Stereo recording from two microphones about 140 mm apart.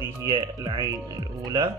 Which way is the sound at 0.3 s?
30° right (ahead or behind).